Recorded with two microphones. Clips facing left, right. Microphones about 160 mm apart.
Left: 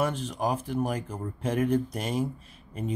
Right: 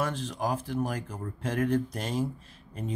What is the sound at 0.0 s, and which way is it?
Speech, 15° left (ahead or behind).